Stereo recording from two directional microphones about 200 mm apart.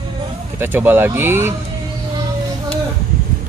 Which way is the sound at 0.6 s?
10° right (ahead or behind).